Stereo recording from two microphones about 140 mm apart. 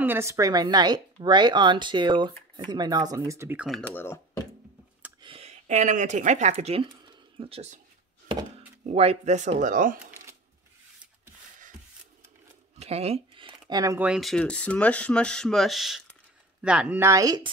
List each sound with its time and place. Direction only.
0.0 s speech: 15° right (ahead or behind)
3.8 s speech: 15° left (ahead or behind)
5.2 s speech: 45° right (ahead or behind)
8.8 s speech: 45° right (ahead or behind); by 9.9 s 70° right (ahead or behind)
12.8 s speech: 45° right (ahead or behind); by 13.9 s 30° right (ahead or behind)
13.9 s speech: 5° right (ahead or behind)
14.4 s speech: 10° left (ahead or behind); by 17.0 s 10° right (ahead or behind)
17.0 s speech: 25° right (ahead or behind)